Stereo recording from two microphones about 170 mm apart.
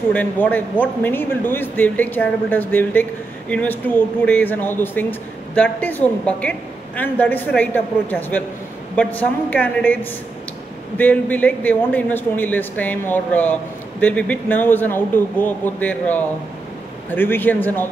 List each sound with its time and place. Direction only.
0.1 s a man's voice: 10° left (ahead or behind)
11.0 s a man's voice: 10° left (ahead or behind)